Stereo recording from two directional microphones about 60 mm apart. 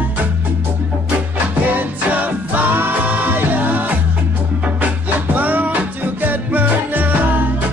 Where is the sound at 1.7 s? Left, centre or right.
Right.